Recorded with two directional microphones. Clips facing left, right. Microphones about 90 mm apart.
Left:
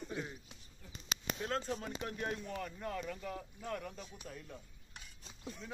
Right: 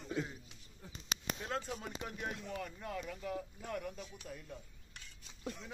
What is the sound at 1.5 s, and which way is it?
Speech, 5° right (ahead or behind).